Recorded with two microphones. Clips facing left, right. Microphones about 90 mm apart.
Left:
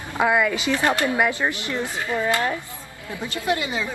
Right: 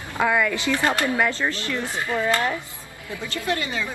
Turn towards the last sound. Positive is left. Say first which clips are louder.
# left 2 dB
turn(degrees=20)  # may be behind; listen again after turning